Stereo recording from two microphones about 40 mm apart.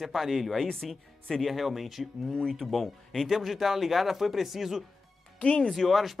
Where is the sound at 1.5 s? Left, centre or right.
Centre.